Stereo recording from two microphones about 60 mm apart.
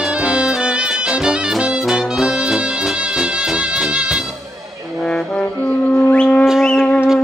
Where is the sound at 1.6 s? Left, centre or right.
Centre.